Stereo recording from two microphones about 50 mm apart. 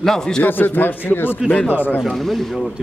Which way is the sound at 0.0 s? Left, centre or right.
Centre.